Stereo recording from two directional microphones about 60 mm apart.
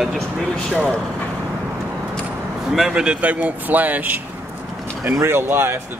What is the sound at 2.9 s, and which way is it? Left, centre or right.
A man's voice, centre.